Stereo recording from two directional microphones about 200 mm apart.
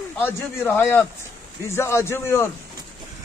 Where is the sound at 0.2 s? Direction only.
10° left (ahead or behind).